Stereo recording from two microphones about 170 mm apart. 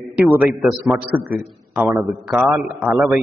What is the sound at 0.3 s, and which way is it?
A man's voice, 10° right (ahead or behind).